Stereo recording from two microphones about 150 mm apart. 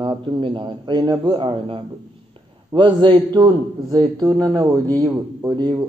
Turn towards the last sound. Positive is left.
turn(degrees=-25)  # may be behind; listen again after turning